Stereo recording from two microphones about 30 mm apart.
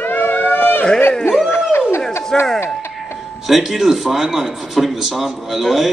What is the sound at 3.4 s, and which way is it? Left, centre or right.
A man's voice, centre.